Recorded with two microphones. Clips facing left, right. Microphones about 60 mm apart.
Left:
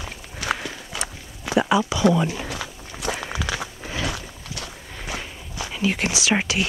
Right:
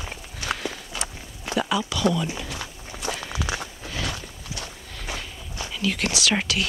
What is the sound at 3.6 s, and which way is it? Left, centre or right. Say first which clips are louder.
Biting: left 3 dB; centre.